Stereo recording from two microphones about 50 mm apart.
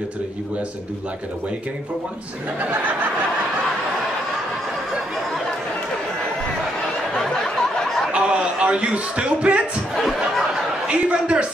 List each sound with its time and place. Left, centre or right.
7.2 s a sound: centre
8.1 s a man's voice: centre
10.9 s a man's voice: right